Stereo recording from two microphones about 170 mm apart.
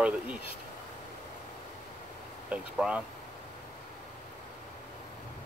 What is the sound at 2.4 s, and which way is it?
Speech, 5° right (ahead or behind).